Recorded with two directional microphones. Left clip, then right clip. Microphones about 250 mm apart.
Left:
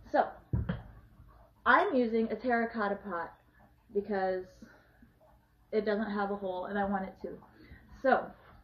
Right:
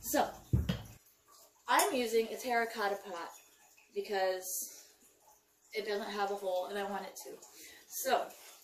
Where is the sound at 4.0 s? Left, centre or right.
Right.